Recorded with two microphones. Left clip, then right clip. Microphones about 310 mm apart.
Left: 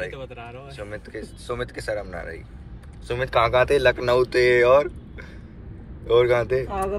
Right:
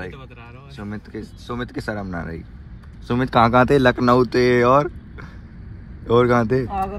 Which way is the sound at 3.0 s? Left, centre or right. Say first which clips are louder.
Right 4 dB; right.